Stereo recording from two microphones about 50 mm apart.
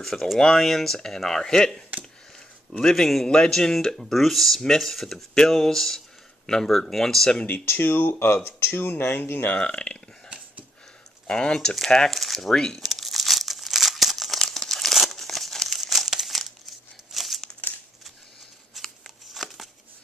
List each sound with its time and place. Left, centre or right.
0.0 s speech: centre
2.8 s a man's voice: centre
7.4 s speech: left
9.6 s speech: left
11.2 s speech: centre
12.8 s crumpling: centre
18.8 s shuffling cards: centre
19.3 s a sound: centre